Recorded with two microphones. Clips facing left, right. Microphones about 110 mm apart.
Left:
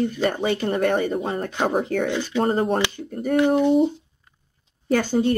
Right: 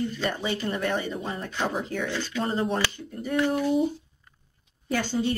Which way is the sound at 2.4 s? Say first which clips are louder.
Left 6 dB; 50° left (ahead or behind).